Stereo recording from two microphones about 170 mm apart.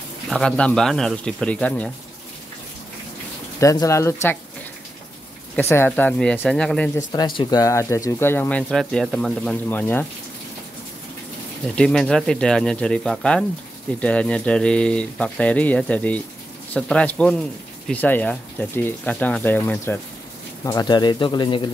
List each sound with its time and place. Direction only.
0.3 s speech: 5° left (ahead or behind)
3.5 s speech: 20° left (ahead or behind)
5.6 s speech: 15° left (ahead or behind)
7.1 s speech: 25° left (ahead or behind)
11.6 s speech: 5° left (ahead or behind); by 21.6 s 30° left (ahead or behind)